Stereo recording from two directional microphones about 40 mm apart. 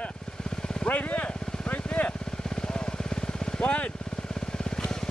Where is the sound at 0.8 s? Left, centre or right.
Left.